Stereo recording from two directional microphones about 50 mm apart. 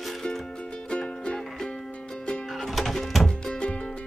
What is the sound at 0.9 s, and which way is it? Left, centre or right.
Music, centre.